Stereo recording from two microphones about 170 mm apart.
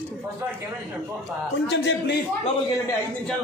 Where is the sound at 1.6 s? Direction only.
90° left.